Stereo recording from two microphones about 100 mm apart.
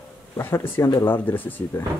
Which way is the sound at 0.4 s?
20° left (ahead or behind).